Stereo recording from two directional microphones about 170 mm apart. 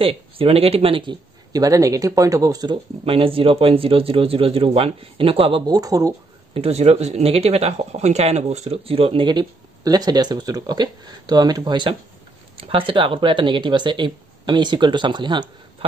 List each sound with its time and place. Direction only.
0.0 s a man's voice: 35° right (ahead or behind)
6.5 s a man's voice: 35° right (ahead or behind)